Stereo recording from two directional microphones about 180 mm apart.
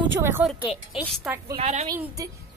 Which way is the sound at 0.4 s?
10° right (ahead or behind).